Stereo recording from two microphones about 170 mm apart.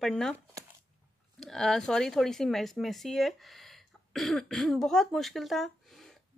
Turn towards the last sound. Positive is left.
turn(degrees=0)  # may be behind; listen again after turning